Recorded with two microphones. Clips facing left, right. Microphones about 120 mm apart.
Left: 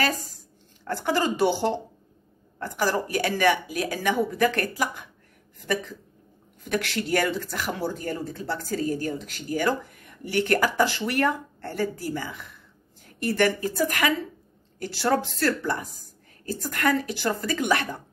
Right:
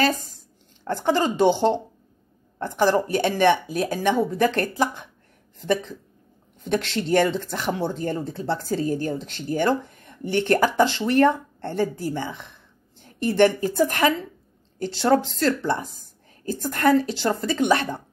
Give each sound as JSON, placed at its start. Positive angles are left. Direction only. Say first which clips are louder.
{"t": 0.8, "sound": "speech", "louder": "right 3 dB", "side_deg": -20}